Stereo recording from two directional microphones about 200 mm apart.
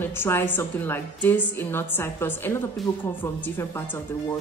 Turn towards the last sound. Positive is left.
turn(degrees=10)  # may be behind; listen again after turning